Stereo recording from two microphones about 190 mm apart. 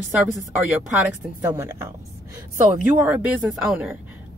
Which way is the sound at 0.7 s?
10° right (ahead or behind).